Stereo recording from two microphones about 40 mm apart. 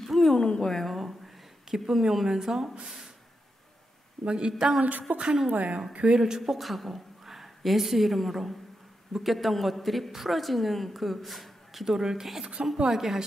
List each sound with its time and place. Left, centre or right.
0.0 s a sound: centre
0.4 s speech: left
0.7 s speech: centre
4.3 s speech: right
5.1 s a woman's voice: right
6.1 s speech: centre
6.4 s a woman's voice: centre
11.8 s speech: centre